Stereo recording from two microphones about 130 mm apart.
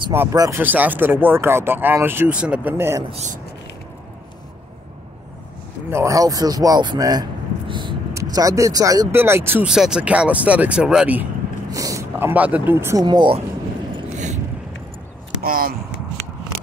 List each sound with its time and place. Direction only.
0.1 s speech: 20° right (ahead or behind)
0.6 s speech: 15° right (ahead or behind)
3.1 s speech: 60° right (ahead or behind)
5.9 s speech: 20° right (ahead or behind); by 7.9 s 40° right (ahead or behind)
8.1 s speech: 25° right (ahead or behind)
9.7 s speech: 5° right (ahead or behind)
11.7 s speech: 25° right (ahead or behind)
13.0 s speech: 35° right (ahead or behind)
14.1 s a sound: 70° right (ahead or behind)
15.4 s a sound: 90° right